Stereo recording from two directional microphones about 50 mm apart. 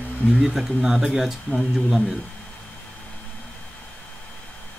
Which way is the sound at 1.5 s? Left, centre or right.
Centre.